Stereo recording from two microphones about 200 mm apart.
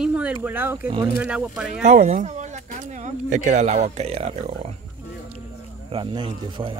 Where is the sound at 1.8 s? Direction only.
40° right (ahead or behind).